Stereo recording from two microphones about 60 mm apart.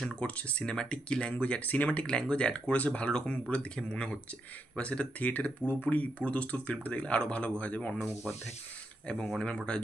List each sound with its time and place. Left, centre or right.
0.5 s speech: centre
3.1 s speech: centre
9.0 s speech: centre